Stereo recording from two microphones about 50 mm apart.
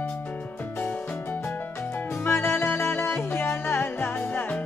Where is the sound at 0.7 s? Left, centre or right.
Left.